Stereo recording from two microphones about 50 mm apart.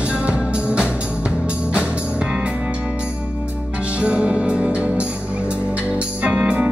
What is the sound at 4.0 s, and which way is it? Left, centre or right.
Music, right.